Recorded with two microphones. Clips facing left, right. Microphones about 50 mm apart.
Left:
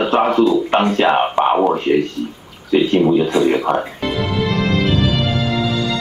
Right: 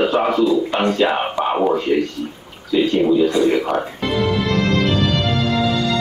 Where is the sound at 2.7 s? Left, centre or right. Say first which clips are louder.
Left 2 dB; left.